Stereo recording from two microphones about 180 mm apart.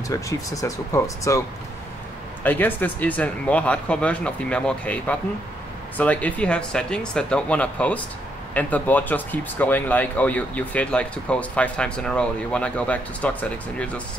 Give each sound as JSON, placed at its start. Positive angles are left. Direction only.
{"t": 0.1, "sound": "speech", "side_deg": 20}
{"t": 2.4, "sound": "speech", "side_deg": 10}